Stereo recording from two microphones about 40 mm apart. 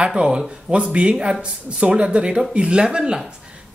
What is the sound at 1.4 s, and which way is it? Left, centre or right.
Speech, right.